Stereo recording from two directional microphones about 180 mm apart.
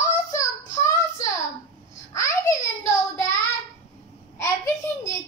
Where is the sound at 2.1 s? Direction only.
15° left (ahead or behind).